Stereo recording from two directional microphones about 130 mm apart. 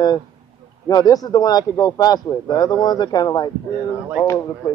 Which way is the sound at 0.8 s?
30° left (ahead or behind).